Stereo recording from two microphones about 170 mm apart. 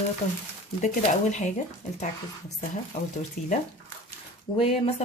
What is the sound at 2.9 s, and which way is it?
Speech, 45° left (ahead or behind).